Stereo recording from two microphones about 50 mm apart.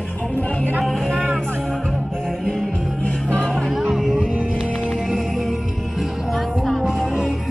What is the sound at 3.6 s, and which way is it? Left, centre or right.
Music, centre.